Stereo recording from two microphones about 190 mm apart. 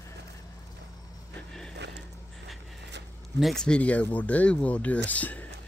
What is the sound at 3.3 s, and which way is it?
Speech, centre (ahead or behind).